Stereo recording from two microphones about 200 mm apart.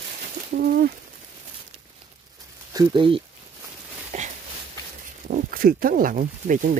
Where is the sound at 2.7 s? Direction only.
20° right (ahead or behind).